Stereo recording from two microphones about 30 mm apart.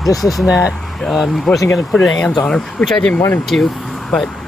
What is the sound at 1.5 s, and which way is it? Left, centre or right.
Speech, centre.